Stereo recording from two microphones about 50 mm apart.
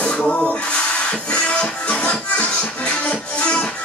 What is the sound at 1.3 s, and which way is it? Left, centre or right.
Music, left.